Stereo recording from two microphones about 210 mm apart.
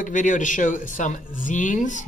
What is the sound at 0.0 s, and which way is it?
Speech, 40° left (ahead or behind).